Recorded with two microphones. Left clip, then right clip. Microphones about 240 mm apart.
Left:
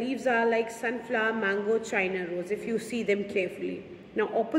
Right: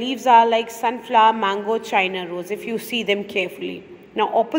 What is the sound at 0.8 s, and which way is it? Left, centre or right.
Speech, right.